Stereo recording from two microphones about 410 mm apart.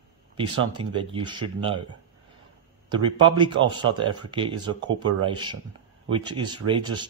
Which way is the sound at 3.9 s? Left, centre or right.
Centre.